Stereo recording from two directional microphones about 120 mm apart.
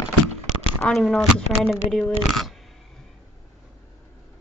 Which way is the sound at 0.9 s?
Centre (ahead or behind).